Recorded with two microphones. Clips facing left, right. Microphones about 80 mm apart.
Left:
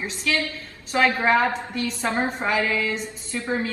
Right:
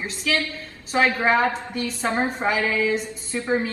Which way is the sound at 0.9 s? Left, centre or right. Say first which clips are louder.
Even; centre.